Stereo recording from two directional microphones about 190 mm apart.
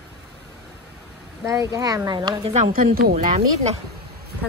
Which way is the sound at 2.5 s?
45° right (ahead or behind).